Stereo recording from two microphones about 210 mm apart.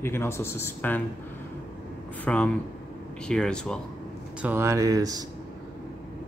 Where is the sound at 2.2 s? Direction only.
5° left (ahead or behind).